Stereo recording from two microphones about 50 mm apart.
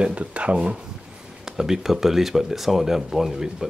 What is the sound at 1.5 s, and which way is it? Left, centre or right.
Speech, centre.